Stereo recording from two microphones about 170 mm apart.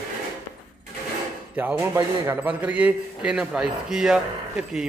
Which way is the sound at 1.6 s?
15° right (ahead or behind).